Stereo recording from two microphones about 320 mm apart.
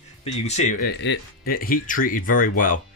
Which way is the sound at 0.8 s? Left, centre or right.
Left.